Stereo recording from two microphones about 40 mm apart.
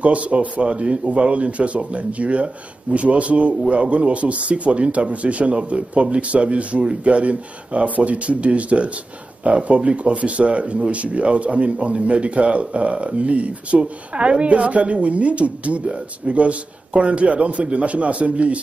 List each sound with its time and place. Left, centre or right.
0.0 s speech: right